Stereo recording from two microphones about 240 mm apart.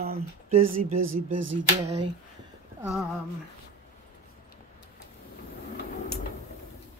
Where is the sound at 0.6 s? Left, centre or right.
Right.